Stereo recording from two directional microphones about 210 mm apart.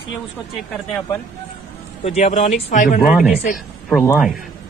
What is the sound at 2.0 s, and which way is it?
Speech, 30° left (ahead or behind).